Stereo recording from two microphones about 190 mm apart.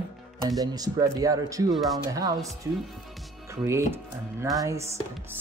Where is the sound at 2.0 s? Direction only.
20° right (ahead or behind).